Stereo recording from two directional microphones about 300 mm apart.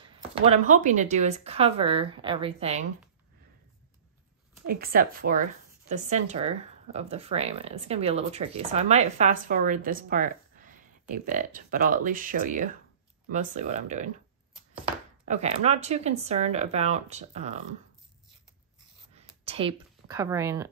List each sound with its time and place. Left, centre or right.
0.0 s speech: centre
4.6 s speech: right
19.1 s speech: centre